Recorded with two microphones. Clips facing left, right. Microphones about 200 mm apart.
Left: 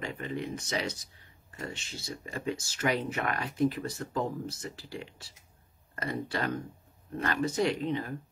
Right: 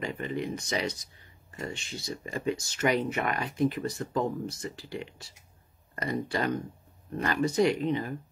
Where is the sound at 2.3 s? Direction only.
10° right (ahead or behind).